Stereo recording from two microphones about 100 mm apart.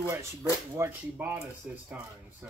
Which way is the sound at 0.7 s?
20° right (ahead or behind).